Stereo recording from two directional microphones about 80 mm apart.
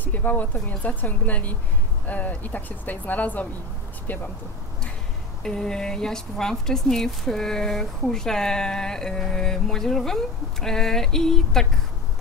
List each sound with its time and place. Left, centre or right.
0.0 s a woman's voice: left
5.4 s speech: centre